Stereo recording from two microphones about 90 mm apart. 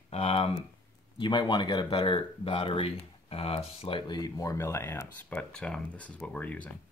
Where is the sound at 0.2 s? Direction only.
90° left.